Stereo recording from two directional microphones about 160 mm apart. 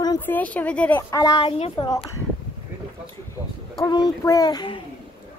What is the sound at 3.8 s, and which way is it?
Speech, 25° left (ahead or behind).